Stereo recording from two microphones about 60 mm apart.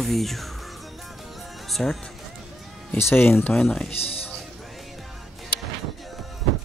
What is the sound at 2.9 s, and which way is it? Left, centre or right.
Speech, left.